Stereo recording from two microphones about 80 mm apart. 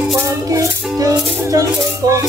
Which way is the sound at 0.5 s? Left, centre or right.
Right.